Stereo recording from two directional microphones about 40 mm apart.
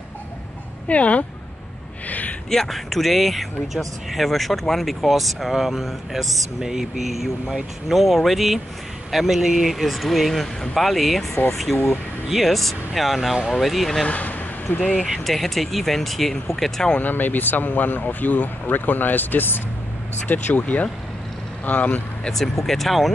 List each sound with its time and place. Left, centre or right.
0.8 s speech: left
2.0 s a sound: left
2.5 s speech: centre
11.7 s speech: left
12.3 s speech: centre
14.0 s speech: left
15.0 s speech: centre
17.0 s speech: left
22.3 s speech: centre